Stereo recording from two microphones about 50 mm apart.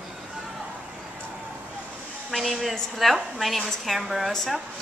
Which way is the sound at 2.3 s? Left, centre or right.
Centre.